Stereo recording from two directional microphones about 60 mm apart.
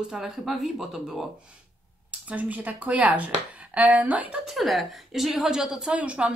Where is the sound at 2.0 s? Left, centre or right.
Right.